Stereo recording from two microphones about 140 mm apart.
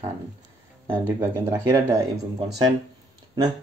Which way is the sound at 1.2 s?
15° right (ahead or behind).